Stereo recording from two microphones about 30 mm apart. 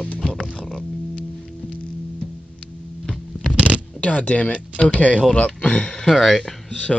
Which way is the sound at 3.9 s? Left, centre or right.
Left.